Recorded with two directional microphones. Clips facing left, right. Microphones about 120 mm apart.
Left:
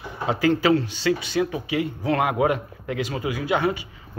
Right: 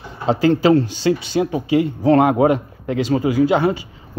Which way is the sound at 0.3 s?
30° right (ahead or behind).